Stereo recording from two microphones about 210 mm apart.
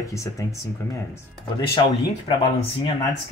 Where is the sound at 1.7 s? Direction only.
20° left (ahead or behind).